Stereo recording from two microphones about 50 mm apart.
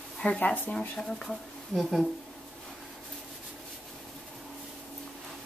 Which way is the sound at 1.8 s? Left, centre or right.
Centre.